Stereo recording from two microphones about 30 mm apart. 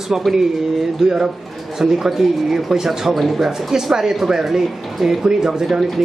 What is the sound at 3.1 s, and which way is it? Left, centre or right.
Speech, centre.